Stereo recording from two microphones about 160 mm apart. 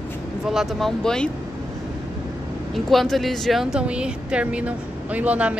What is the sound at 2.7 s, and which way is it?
Speech, centre (ahead or behind).